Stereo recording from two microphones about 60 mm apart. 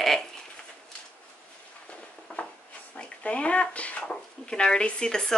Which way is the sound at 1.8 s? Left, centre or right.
Left.